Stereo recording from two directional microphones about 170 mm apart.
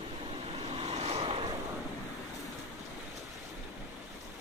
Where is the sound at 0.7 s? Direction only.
35° right (ahead or behind).